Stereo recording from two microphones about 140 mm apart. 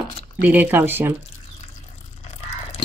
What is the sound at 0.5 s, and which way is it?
Speech, 15° right (ahead or behind).